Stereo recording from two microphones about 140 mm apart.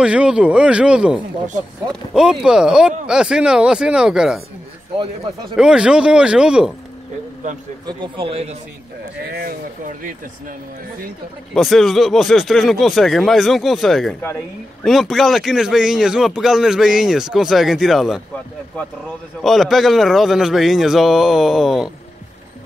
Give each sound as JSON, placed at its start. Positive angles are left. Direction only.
{"t": 0.0, "sound": "a man's voice", "side_deg": -5}
{"t": 5.6, "sound": "speech", "side_deg": -5}
{"t": 7.8, "sound": "a man's voice", "side_deg": -35}
{"t": 9.2, "sound": "speech", "side_deg": -90}
{"t": 11.5, "sound": "a man's voice", "side_deg": 0}
{"t": 19.4, "sound": "a man's voice", "side_deg": 0}